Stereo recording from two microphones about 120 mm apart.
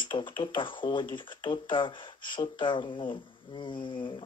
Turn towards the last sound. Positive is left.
turn(degrees=40)  # may be behind; listen again after turning